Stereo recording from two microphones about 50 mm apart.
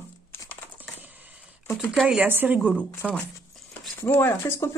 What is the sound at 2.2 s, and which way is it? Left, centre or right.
Speech, right.